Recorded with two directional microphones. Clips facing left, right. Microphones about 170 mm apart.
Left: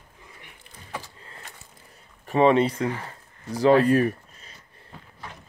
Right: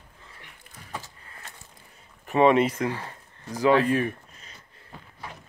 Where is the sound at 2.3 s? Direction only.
35° left (ahead or behind).